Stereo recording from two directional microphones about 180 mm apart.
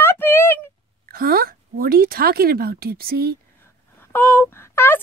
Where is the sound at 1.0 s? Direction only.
55° right (ahead or behind).